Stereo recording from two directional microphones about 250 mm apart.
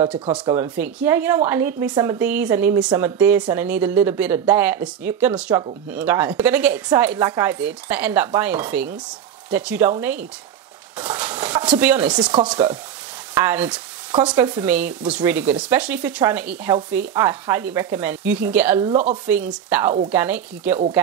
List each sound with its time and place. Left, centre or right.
0.5 s speech: centre
11.0 s stir: centre
12.4 s speech: centre
18.9 s speech: right
19.2 s speech: centre